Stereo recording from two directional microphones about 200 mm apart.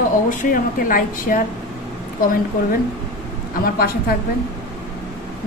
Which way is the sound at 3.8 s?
50° left (ahead or behind).